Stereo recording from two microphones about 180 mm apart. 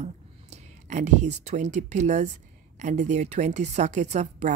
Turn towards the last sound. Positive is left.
turn(degrees=-40)  # may be behind; listen again after turning